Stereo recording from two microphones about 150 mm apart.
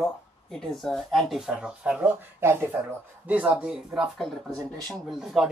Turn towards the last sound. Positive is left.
turn(degrees=0)  # may be behind; listen again after turning